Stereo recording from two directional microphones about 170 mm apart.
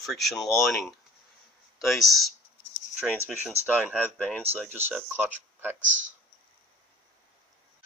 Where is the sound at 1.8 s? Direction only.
Centre (ahead or behind).